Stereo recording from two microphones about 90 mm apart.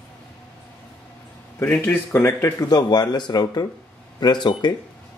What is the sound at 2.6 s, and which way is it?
Speech, 50° left (ahead or behind).